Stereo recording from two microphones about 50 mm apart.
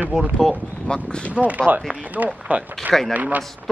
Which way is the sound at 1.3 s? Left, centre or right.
Right.